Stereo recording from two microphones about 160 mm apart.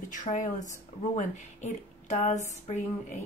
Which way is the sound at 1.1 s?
50° left (ahead or behind).